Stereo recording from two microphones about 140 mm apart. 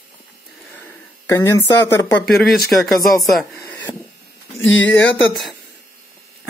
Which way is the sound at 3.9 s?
30° left (ahead or behind).